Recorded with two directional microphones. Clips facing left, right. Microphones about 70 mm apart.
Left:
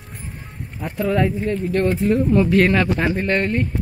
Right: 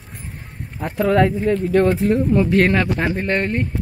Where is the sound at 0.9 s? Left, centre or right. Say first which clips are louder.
Right 4 dB; right.